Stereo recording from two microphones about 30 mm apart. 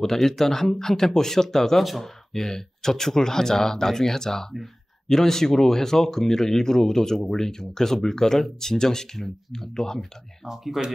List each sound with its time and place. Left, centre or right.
0.0 s speech: centre
1.8 s speech: centre
2.3 s speech: centre
10.8 s speech: centre